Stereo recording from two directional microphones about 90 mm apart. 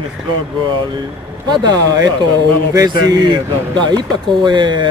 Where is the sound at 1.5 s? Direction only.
50° right (ahead or behind).